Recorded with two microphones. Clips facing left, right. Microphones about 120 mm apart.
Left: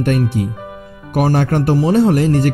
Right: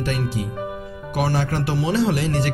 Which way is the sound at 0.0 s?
55° left (ahead or behind).